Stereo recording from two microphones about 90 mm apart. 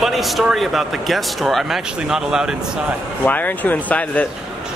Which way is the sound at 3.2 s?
20° left (ahead or behind).